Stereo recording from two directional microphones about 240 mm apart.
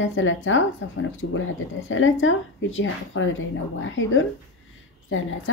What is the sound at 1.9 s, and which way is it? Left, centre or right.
A woman's voice, left.